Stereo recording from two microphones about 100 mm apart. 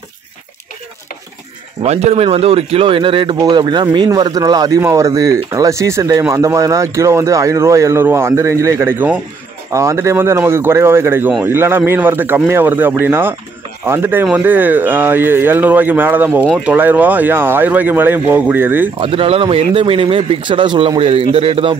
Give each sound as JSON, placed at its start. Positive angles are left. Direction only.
{"t": 1.9, "sound": "speech", "side_deg": -90}
{"t": 4.8, "sound": "speech", "side_deg": -30}
{"t": 9.7, "sound": "speech", "side_deg": -30}
{"t": 18.9, "sound": "speech", "side_deg": -70}